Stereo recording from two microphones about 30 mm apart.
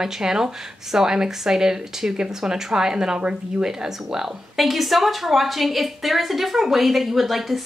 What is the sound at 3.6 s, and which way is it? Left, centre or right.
Speech, right.